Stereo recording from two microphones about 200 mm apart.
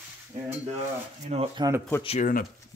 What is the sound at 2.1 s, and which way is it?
Speech, 40° left (ahead or behind).